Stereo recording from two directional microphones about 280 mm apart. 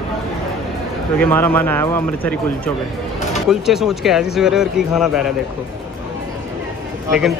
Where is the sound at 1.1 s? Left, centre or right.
Centre.